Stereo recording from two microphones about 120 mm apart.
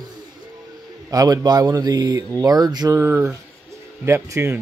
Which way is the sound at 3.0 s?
20° right (ahead or behind).